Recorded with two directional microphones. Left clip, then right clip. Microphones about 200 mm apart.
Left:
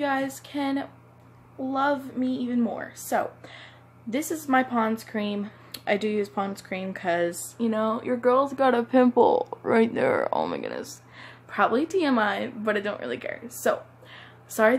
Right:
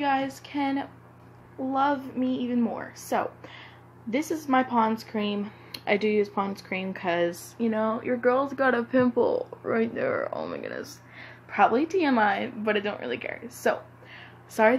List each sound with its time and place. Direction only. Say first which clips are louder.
0.0 s speech: right 1 dB; 15° left (ahead or behind); by 10.8 s 35° left (ahead or behind)
10.8 s a woman's voice: left 1 dB; 15° left (ahead or behind)